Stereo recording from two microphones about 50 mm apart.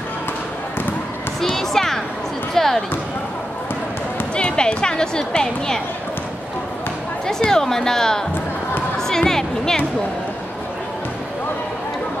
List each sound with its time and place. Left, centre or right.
1.4 s a sound: centre
2.5 s basketball bounce: centre
4.4 s speech: centre
7.2 s a woman's voice: centre